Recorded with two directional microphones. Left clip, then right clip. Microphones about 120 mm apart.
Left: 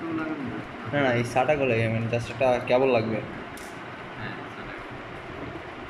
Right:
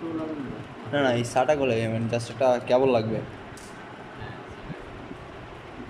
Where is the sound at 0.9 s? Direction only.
5° right (ahead or behind).